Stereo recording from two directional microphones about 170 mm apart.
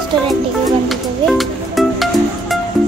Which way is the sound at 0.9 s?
Centre (ahead or behind).